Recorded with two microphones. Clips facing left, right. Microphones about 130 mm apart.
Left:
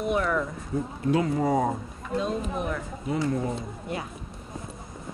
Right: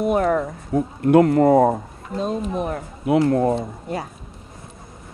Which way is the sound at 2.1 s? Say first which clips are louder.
Right 4 dB; 40° right (ahead or behind).